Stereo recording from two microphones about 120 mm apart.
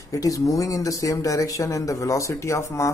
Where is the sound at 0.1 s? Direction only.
30° left (ahead or behind).